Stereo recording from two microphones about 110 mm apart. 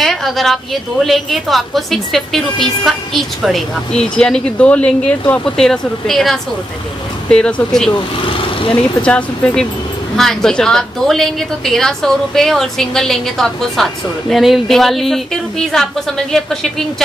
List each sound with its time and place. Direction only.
0.0 s a woman's voice: centre (ahead or behind)
8.3 s vehicle: 55° left (ahead or behind)
9.0 s a woman's voice: 10° left (ahead or behind)